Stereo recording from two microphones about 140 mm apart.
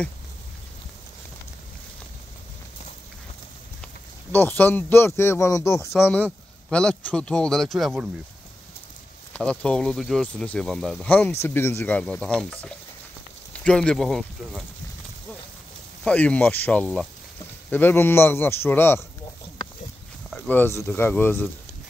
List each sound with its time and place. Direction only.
4.3 s speech: 15° left (ahead or behind)
9.3 s speech: 10° left (ahead or behind)
16.0 s speech: 10° left (ahead or behind)
20.2 s speech: 10° left (ahead or behind)